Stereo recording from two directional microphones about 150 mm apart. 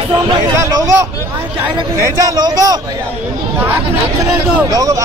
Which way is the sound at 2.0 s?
25° right (ahead or behind).